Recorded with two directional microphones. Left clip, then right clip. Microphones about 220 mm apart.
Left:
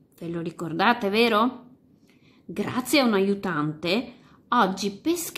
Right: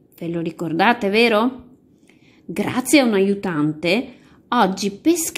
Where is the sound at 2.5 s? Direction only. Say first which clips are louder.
Right 7 dB; 15° right (ahead or behind).